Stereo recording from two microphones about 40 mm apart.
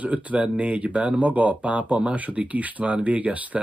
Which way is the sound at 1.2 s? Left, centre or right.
Right.